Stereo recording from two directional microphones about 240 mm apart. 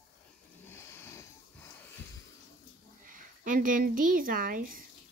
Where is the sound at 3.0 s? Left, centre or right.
Right.